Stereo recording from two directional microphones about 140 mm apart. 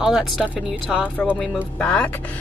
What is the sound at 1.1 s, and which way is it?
Speech, 10° left (ahead or behind).